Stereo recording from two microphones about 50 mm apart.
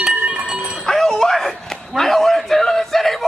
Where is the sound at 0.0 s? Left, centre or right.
Centre.